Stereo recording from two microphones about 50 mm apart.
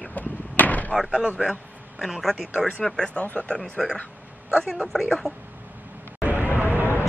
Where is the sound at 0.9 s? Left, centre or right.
Centre.